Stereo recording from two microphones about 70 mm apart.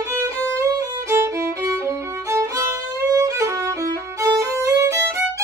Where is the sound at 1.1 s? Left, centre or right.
Right.